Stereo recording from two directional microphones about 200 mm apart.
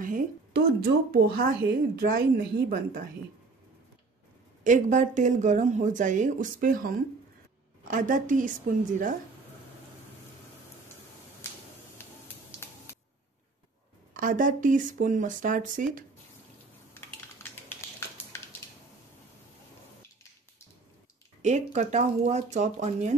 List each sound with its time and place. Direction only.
1.1 s a woman's voice: 50° right (ahead or behind)
4.6 s speech: 40° right (ahead or behind)
7.9 s speech: 40° right (ahead or behind)
11.4 s a sound: 10° left (ahead or behind)
14.1 s speech: 40° right (ahead or behind)
17.4 s a sound: 10° left (ahead or behind)
21.4 s speech: 35° right (ahead or behind)